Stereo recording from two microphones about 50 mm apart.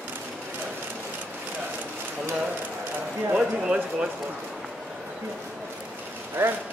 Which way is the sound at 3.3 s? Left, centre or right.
Centre.